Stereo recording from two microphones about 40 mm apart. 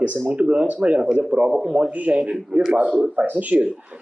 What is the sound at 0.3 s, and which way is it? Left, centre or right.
Speech, right.